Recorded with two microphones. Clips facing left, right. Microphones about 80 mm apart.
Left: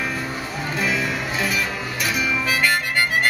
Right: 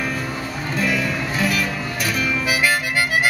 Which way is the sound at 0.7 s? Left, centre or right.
Centre.